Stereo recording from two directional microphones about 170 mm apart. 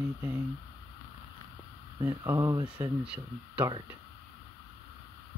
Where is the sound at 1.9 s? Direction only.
25° right (ahead or behind).